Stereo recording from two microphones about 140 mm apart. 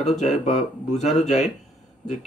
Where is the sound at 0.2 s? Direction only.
55° left (ahead or behind).